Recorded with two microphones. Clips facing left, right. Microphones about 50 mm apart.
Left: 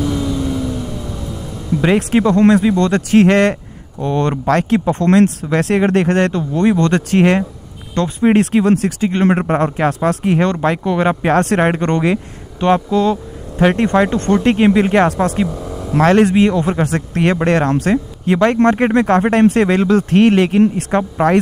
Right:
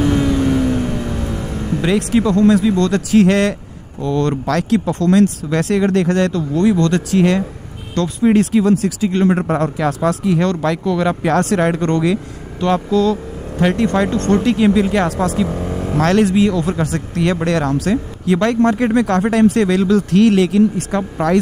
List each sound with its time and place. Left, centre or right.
0.0 s vehicle: right
1.9 s speech: left
5.0 s speech: left
7.9 s speech: left
9.4 s speech: left
10.5 s speech: left
15.4 s vehicle: right
16.2 s speech: left
16.8 s speech: left
18.9 s speech: left